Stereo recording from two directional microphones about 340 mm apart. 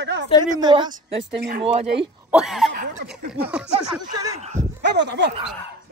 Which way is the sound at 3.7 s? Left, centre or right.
Centre.